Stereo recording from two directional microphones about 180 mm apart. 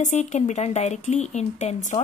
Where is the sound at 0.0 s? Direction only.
40° left (ahead or behind).